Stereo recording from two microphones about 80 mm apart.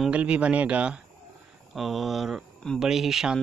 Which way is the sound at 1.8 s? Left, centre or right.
Centre.